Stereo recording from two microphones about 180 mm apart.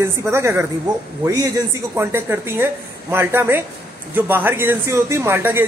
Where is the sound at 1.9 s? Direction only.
15° right (ahead or behind).